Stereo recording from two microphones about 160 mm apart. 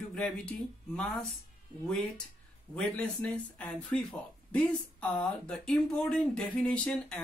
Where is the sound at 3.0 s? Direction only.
10° left (ahead or behind).